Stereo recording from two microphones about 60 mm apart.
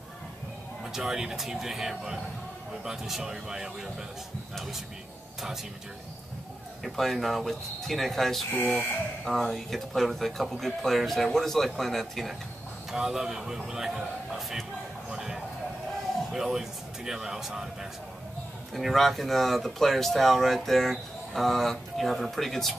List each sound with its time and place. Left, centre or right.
0.9 s speech: centre
6.8 s speech: centre
8.5 s speech: left
9.2 s speech: centre
12.9 s speech: centre
15.0 s a sound: centre
16.3 s speech: centre
18.7 s speech: centre